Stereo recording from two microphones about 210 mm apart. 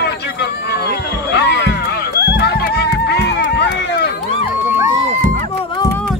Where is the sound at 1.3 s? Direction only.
55° left (ahead or behind).